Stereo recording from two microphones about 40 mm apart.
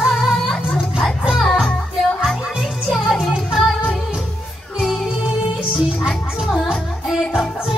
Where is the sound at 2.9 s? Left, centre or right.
Centre.